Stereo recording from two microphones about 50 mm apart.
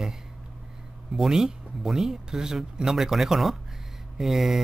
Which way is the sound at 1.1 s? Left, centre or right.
Centre.